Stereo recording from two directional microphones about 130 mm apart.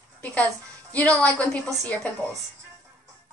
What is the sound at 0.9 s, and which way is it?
Speech, 10° left (ahead or behind).